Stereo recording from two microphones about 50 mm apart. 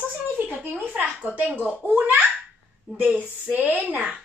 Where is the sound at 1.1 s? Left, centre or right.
Right.